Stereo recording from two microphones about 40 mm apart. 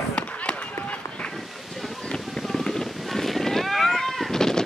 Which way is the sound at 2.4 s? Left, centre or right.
Centre.